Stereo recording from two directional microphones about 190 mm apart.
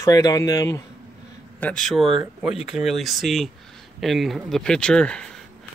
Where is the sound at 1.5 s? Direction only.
5° left (ahead or behind).